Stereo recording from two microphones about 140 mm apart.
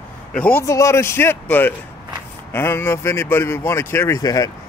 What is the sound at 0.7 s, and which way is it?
A man's voice, 20° left (ahead or behind).